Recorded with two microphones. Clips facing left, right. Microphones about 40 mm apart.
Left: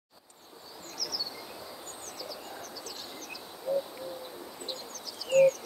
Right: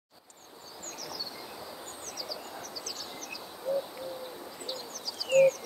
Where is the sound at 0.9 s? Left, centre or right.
Right.